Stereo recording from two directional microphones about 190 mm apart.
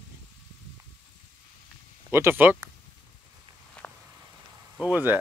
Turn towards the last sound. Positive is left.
turn(degrees=-10)  # may be behind; listen again after turning